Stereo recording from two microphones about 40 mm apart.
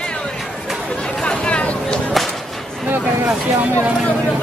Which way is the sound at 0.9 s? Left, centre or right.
Centre.